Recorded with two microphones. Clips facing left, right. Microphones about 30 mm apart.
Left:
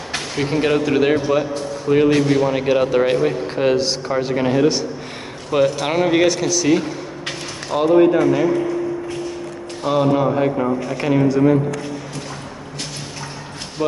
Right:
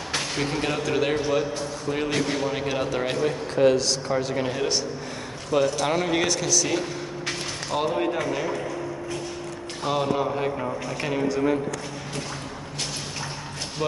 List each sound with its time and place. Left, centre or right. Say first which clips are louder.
0.4 s speech: left 11 dB; left
5.5 s speech: left 5 dB; left
7.9 s speech: left 12 dB; centre
9.8 s speech: left 8 dB; centre